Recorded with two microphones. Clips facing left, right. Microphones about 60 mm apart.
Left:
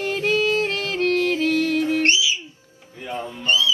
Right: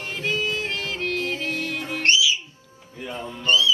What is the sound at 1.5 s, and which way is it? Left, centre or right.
Music, right.